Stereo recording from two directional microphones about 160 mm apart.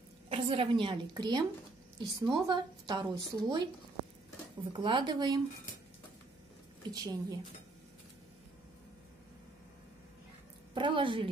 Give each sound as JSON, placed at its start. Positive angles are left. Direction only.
{"t": 0.3, "sound": "a woman's voice", "side_deg": -35}
{"t": 4.7, "sound": "a woman's voice", "side_deg": -30}
{"t": 6.9, "sound": "a woman's voice", "side_deg": -25}
{"t": 10.7, "sound": "a woman's voice", "side_deg": -30}